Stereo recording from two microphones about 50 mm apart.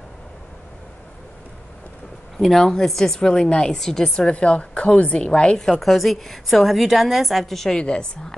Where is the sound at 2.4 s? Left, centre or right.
Centre.